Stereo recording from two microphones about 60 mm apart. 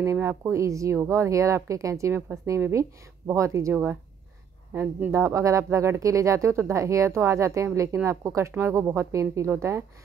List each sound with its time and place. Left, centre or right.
0.0 s speech: right
3.7 s speech: right
5.1 s a woman's voice: right